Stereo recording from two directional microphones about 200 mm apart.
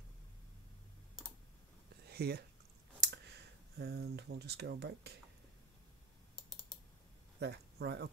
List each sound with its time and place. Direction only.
2.0 s a sound: 55° right (ahead or behind)
3.7 s speech: 55° right (ahead or behind)
7.3 s speech: 55° right (ahead or behind)